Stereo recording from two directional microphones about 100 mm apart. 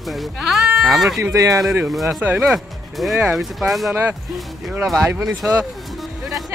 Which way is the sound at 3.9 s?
15° right (ahead or behind).